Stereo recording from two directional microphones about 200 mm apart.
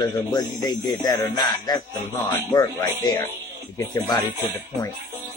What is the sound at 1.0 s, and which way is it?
Speech, 20° left (ahead or behind).